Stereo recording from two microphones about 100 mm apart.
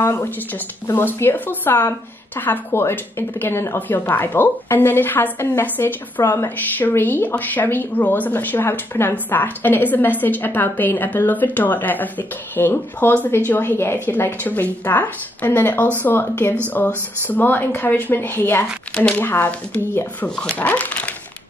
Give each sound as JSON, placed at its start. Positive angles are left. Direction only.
{"t": 0.0, "sound": "speech", "side_deg": 25}
{"t": 18.9, "sound": "speech", "side_deg": 10}